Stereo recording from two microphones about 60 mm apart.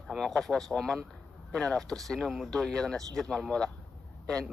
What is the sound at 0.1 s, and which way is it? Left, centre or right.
Speech, centre.